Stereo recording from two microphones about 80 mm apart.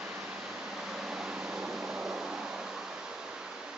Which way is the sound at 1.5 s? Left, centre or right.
Centre.